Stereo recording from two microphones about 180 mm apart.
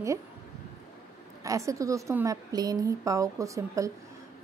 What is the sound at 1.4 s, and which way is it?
Speech, 15° right (ahead or behind).